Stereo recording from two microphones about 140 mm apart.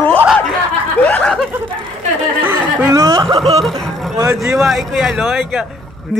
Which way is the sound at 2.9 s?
25° right (ahead or behind).